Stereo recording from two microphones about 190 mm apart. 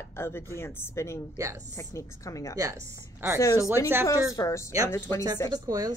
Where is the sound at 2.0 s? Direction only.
15° left (ahead or behind).